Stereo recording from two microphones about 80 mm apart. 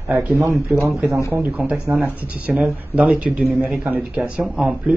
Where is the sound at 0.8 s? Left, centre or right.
Right.